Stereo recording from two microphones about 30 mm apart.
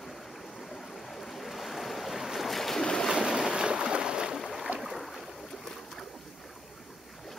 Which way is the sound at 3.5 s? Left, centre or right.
Right.